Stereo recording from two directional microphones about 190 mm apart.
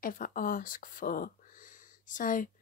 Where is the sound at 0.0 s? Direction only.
45° left (ahead or behind).